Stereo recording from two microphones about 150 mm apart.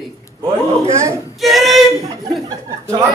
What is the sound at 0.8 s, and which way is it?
Speech, 20° right (ahead or behind).